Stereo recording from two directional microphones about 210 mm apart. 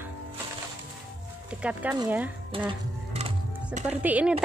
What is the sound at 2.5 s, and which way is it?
Music, 25° right (ahead or behind).